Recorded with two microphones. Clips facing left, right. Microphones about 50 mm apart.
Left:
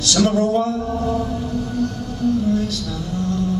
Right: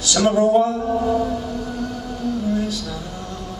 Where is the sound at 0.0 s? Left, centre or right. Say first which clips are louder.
Right 1 dB; centre.